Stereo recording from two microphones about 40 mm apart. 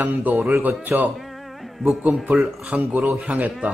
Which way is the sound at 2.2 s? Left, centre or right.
Right.